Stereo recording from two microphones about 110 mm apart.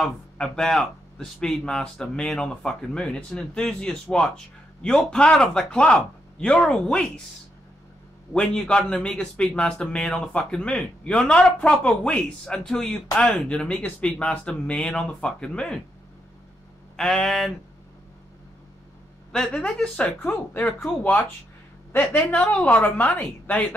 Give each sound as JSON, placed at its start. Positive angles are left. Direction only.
{"t": 0.0, "sound": "a man's voice", "side_deg": 5}
{"t": 8.3, "sound": "a man's voice", "side_deg": 10}
{"t": 16.9, "sound": "speech", "side_deg": 5}
{"t": 19.3, "sound": "a man's voice", "side_deg": 5}